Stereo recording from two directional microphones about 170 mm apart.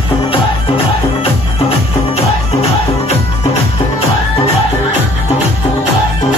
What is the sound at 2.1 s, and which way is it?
Music, 40° left (ahead or behind).